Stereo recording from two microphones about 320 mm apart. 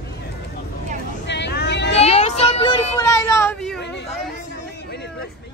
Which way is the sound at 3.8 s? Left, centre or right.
Left.